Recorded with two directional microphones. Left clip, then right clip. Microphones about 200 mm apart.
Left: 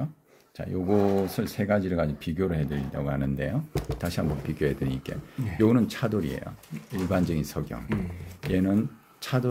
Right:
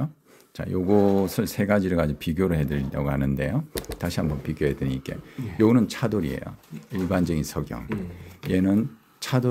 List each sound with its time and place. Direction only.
0.6 s speech: 30° right (ahead or behind)